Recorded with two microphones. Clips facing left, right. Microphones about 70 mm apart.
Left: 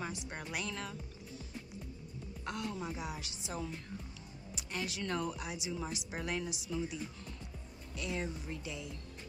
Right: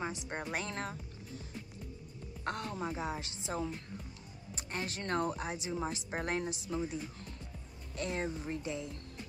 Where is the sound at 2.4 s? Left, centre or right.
Right.